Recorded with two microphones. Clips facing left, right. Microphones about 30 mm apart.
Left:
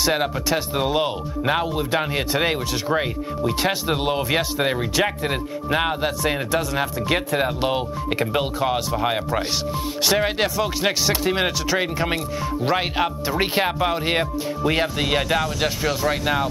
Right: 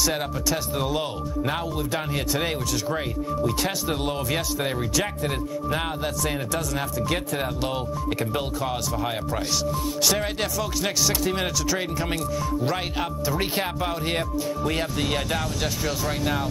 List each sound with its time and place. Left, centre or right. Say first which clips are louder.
0.0 s speech: left 4 dB; left